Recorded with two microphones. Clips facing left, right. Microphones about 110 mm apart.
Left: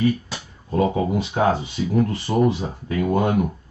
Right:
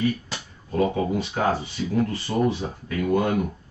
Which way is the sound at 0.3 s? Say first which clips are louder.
Left 3 dB; 20° left (ahead or behind).